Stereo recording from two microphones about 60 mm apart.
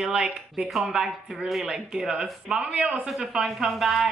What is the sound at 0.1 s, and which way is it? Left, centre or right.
Speech, centre.